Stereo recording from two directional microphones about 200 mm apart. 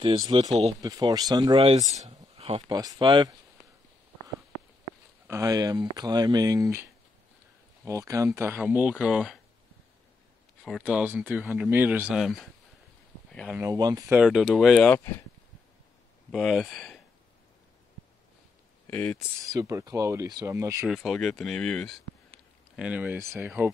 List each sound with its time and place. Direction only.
0.0 s speech: 25° right (ahead or behind)
5.3 s speech: 15° right (ahead or behind)
10.6 s speech: 5° right (ahead or behind)
13.6 s speech: 15° right (ahead or behind); by 15.2 s 10° left (ahead or behind)
16.3 s speech: centre (ahead or behind)
18.9 s speech: 5° left (ahead or behind)
19.4 s speech: 15° right (ahead or behind)
20.9 s speech: centre (ahead or behind)
22.8 s speech: 5° right (ahead or behind)